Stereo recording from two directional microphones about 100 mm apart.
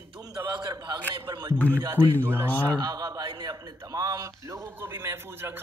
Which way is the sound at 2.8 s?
40° right (ahead or behind).